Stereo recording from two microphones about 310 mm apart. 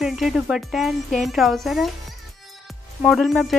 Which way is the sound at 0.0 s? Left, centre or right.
Centre.